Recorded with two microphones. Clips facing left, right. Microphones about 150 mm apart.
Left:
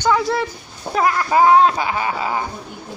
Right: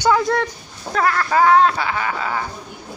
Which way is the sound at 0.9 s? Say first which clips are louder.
Left 1 dB; 15° left (ahead or behind).